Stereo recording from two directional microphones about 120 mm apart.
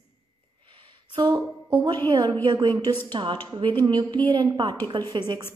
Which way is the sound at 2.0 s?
35° right (ahead or behind).